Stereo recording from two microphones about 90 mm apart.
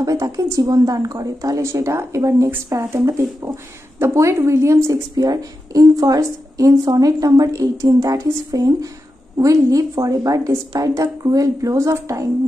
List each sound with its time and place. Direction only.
0.0 s a woman's voice: 40° right (ahead or behind)
5.1 s a woman's voice: 45° right (ahead or behind)